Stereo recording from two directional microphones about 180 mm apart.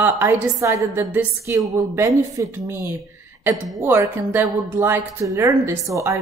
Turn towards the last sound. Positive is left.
turn(degrees=-15)  # may be behind; listen again after turning